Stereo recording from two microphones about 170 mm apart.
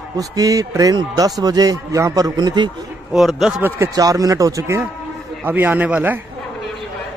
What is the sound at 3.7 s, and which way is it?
A man's voice, 20° right (ahead or behind).